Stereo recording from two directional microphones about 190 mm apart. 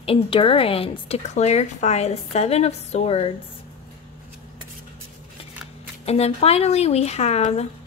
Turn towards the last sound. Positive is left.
turn(degrees=35)  # may be behind; listen again after turning